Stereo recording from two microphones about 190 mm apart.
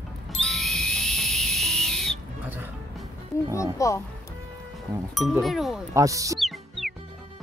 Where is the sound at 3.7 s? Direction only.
15° left (ahead or behind).